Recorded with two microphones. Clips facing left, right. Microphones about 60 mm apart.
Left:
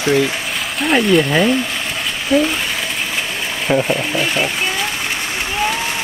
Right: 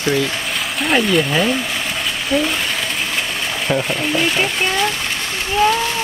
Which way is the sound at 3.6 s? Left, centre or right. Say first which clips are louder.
Left 3 dB; centre.